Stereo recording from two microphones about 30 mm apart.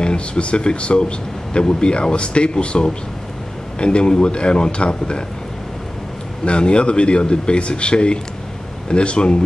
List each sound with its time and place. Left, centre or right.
0.0 s a man's voice: left
6.4 s a man's voice: left